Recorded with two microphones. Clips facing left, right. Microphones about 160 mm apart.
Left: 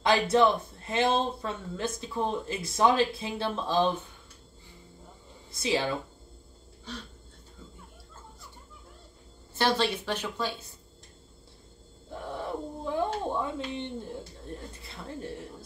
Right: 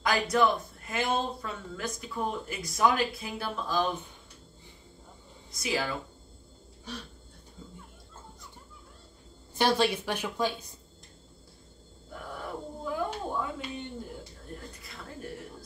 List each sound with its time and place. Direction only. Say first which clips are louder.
0.0 s speech: left 3 dB; 25° left (ahead or behind)
5.5 s speech: left 3 dB; 25° left (ahead or behind)
9.6 s speech: right 1 dB; 10° right (ahead or behind)
12.1 s speech: left 4 dB; 25° left (ahead or behind)